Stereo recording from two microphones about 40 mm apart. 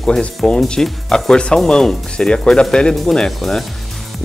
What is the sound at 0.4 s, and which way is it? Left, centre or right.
Speech, left.